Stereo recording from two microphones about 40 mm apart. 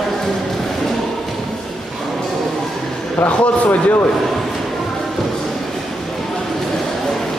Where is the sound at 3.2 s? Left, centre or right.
Left.